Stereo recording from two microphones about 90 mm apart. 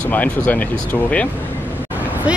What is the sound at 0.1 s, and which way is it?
Speech, 20° left (ahead or behind).